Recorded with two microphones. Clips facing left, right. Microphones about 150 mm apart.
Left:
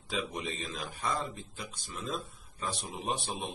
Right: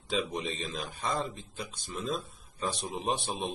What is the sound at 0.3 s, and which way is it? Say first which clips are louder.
A man's voice: right 3 dB; 25° right (ahead or behind).